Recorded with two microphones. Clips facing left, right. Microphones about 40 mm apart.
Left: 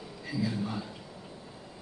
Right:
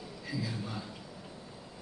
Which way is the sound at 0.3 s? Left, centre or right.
Centre.